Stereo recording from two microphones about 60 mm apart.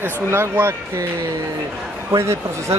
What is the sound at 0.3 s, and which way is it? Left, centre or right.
Speech, right.